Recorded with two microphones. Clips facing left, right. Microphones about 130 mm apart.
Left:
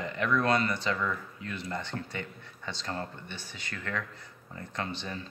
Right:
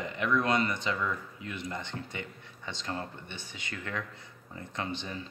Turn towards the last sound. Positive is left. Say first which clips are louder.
# even
turn(degrees=-20)  # may be behind; listen again after turning